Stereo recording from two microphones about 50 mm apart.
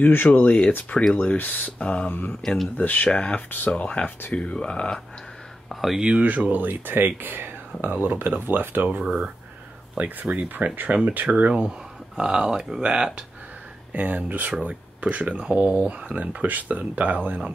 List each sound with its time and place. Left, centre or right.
0.1 s speech: left
0.5 s speech: left
2.0 s speech: left
2.4 s speech: centre
2.8 s speech: left
3.4 s speech: left
3.7 s speech: left
5.7 s speech: centre
5.9 s speech: centre
6.2 s speech: right
9.9 s speech: right
13.9 s speech: right